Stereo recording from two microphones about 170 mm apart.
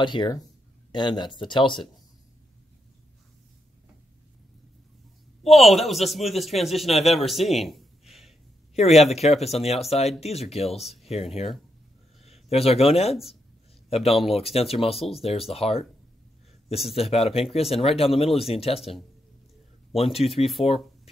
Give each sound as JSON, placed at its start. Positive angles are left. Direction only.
{"t": 0.0, "sound": "speech", "side_deg": 25}
{"t": 5.6, "sound": "a man's voice", "side_deg": 0}
{"t": 8.7, "sound": "speech", "side_deg": 40}
{"t": 12.3, "sound": "speech", "side_deg": 35}
{"t": 16.9, "sound": "speech", "side_deg": 35}
{"t": 19.9, "sound": "speech", "side_deg": 35}
{"t": 20.6, "sound": "a sound", "side_deg": 35}